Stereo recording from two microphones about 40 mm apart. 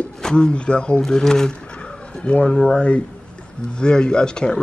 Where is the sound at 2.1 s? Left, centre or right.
Left.